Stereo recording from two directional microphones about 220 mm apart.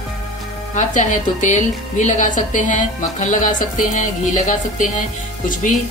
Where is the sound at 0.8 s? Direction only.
35° left (ahead or behind).